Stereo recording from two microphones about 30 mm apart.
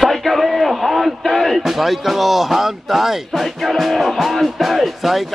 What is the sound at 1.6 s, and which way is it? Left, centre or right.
Speech, centre.